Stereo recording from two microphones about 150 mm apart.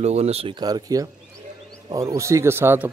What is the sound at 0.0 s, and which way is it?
A man's voice, 45° right (ahead or behind).